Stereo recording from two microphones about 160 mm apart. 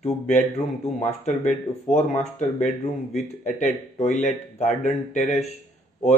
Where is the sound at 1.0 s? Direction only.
50° left (ahead or behind).